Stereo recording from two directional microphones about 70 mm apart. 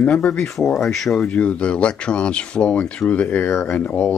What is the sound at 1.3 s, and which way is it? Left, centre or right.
Speech, centre.